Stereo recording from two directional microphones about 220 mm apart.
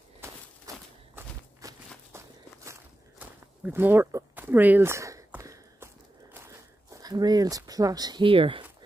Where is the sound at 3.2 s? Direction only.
10° right (ahead or behind).